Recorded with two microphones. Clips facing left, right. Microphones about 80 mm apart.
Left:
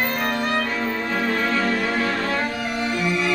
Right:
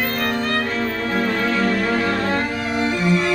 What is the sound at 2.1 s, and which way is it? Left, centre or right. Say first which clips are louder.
Cello: right 3 dB; right.